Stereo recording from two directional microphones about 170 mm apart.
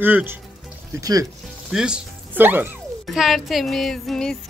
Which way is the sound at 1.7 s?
5° right (ahead or behind).